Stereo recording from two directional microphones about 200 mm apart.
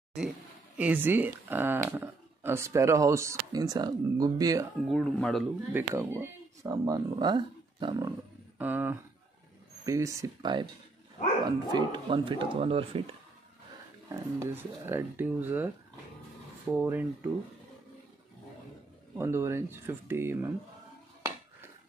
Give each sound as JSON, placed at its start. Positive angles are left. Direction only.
{"t": 0.7, "sound": "speech", "side_deg": -10}
{"t": 4.8, "sound": "speech", "side_deg": 0}
{"t": 5.7, "sound": "speech", "side_deg": -10}
{"t": 8.5, "sound": "speech", "side_deg": -10}
{"t": 14.0, "sound": "speech", "side_deg": -10}
{"t": 16.7, "sound": "speech", "side_deg": -10}
{"t": 19.1, "sound": "speech", "side_deg": -15}